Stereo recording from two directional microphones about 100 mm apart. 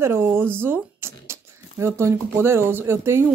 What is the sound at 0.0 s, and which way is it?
Speech, 25° right (ahead or behind).